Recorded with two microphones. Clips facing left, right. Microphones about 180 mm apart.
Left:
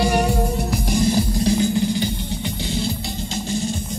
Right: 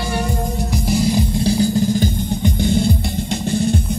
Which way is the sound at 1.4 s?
35° right (ahead or behind).